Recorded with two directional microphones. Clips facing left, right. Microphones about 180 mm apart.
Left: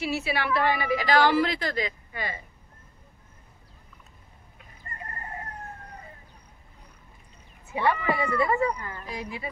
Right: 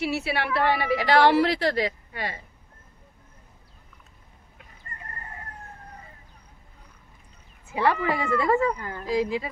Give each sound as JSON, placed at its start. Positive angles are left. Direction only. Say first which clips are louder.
{"t": 0.0, "sound": "a woman's voice", "louder": "right 1 dB", "side_deg": -65}
{"t": 7.7, "sound": "speech", "louder": "right 2 dB", "side_deg": -90}